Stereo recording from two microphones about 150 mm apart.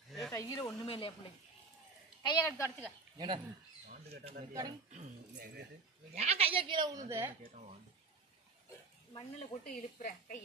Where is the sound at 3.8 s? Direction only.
65° right (ahead or behind).